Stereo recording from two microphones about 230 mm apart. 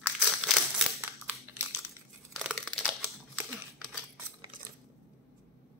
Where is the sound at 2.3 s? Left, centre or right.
Centre.